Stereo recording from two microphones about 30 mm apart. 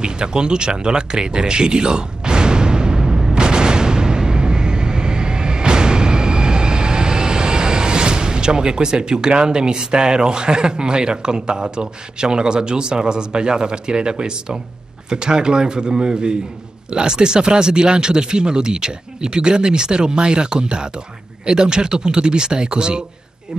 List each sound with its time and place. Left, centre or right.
0.0 s speech: right
3.3 s vehicle: right
15.0 s speech: right